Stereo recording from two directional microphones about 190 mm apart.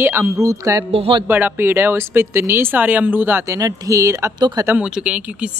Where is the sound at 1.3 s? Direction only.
10° right (ahead or behind).